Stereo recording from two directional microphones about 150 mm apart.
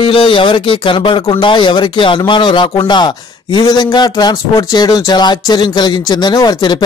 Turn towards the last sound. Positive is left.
turn(degrees=30)  # may be behind; listen again after turning